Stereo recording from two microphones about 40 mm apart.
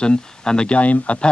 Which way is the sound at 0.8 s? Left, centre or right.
Left.